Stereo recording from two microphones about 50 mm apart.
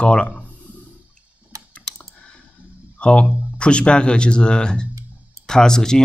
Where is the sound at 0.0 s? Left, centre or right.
Left.